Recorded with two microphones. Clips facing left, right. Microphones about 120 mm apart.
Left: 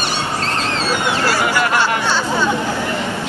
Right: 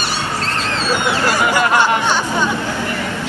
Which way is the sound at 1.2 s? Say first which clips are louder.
Right 2 dB; 20° right (ahead or behind).